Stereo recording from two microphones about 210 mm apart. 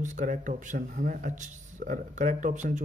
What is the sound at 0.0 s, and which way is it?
Speech, 35° right (ahead or behind).